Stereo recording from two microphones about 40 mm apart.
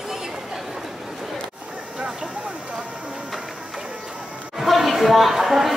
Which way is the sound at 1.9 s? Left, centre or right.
Right.